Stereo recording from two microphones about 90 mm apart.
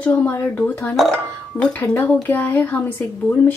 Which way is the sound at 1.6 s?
15° left (ahead or behind).